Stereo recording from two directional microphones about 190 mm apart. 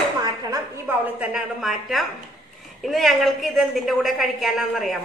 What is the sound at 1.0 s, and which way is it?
A woman's voice, 5° right (ahead or behind).